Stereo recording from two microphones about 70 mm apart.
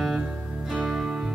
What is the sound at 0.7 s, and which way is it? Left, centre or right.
Music, centre.